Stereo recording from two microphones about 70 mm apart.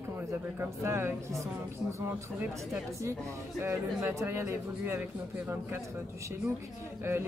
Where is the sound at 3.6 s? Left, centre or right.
Right.